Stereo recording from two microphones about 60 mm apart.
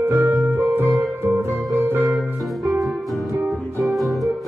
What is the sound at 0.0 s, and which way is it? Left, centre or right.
Music, right.